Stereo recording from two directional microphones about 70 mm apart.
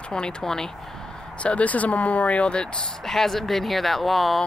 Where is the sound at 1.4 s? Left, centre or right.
Centre.